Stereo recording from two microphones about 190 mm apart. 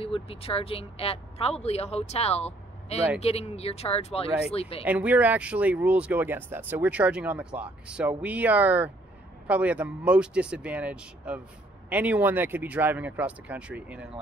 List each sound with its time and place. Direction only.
0.0 s speech: 30° left (ahead or behind)
4.8 s speech: 10° right (ahead or behind)